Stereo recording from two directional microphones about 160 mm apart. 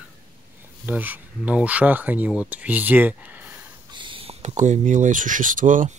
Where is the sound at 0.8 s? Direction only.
10° right (ahead or behind).